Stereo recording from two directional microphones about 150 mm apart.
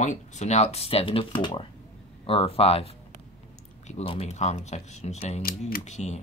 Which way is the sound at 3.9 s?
45° left (ahead or behind).